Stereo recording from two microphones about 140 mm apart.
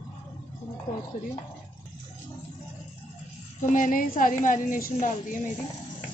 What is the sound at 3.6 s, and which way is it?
A woman's voice, 65° left (ahead or behind).